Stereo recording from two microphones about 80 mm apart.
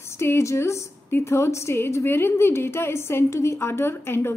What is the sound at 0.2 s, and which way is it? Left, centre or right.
A woman's voice, left.